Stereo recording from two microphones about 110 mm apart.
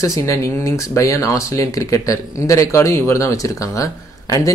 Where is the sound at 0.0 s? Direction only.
30° left (ahead or behind).